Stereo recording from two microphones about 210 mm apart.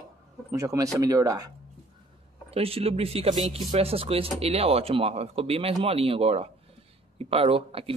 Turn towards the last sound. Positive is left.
turn(degrees=-25)  # may be behind; listen again after turning